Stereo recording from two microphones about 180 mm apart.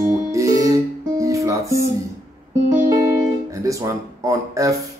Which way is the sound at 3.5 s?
20° right (ahead or behind).